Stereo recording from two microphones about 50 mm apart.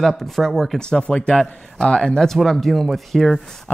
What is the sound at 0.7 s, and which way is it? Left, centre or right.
Speech, centre.